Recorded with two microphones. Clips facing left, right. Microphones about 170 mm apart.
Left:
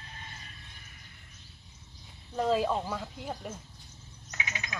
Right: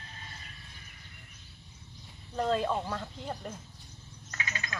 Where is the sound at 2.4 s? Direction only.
5° left (ahead or behind).